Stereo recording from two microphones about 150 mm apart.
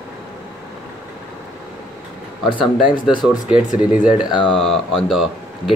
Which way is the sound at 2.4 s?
35° left (ahead or behind).